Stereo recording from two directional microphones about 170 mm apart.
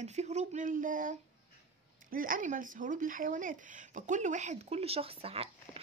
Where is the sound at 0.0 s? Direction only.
40° right (ahead or behind).